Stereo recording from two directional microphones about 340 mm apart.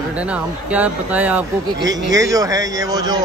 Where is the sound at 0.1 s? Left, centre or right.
Centre.